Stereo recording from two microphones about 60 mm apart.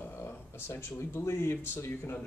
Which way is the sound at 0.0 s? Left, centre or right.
Left.